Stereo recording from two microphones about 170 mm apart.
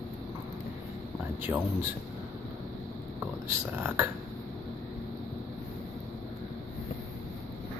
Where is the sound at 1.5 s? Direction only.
20° right (ahead or behind).